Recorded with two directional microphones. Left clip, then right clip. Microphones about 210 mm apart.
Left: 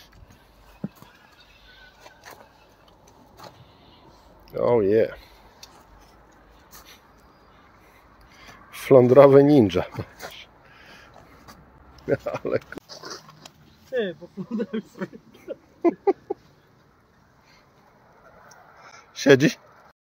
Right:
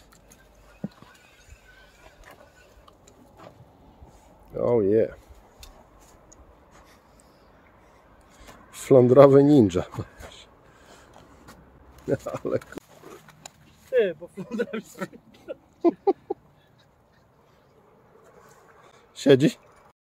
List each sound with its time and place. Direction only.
4.5 s speech: 10° right (ahead or behind)
8.6 s speech: 15° right (ahead or behind)
10.3 s crow: 15° right (ahead or behind)
12.3 s speech: 15° right (ahead or behind)
13.8 s speech: 35° right (ahead or behind)
15.8 s a sound: 10° right (ahead or behind)
18.9 s a sound: 15° right (ahead or behind)